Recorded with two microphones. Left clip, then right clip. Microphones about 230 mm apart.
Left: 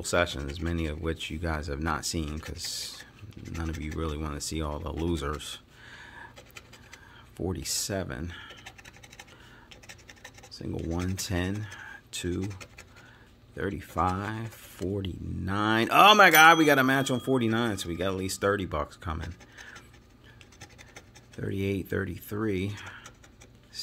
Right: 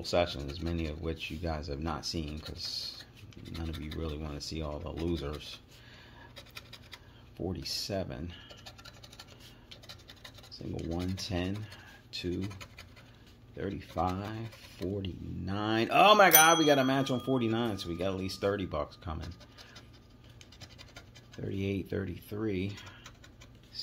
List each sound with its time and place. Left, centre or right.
0.0 s speech: left
4.0 s speech: left
7.3 s speech: left
10.7 s speech: left
12.4 s speech: centre
13.6 s speech: left
21.4 s speech: left